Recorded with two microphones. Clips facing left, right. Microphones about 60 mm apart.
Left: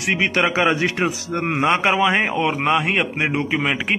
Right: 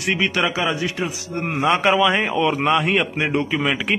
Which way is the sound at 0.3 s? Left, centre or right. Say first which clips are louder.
Left 3 dB; left.